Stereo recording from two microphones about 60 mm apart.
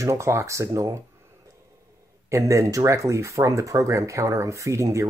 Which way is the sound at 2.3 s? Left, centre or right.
Right.